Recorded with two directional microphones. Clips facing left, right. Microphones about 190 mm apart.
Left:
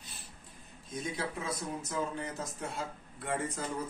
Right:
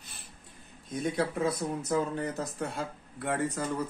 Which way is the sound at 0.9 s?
65° right (ahead or behind).